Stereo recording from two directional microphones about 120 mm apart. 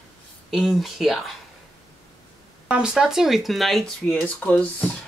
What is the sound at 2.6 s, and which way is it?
Speech, 5° right (ahead or behind).